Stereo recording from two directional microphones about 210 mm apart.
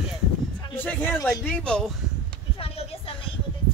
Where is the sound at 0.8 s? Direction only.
10° left (ahead or behind).